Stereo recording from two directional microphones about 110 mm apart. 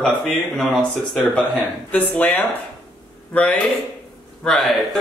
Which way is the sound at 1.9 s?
15° left (ahead or behind).